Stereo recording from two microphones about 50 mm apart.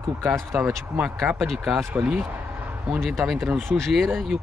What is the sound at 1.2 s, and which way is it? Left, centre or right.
Speech, centre.